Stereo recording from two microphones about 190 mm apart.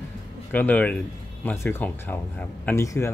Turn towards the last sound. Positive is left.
turn(degrees=15)  # may be behind; listen again after turning